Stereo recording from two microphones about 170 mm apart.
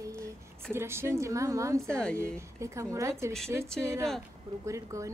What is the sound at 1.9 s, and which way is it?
Speech, 5° left (ahead or behind).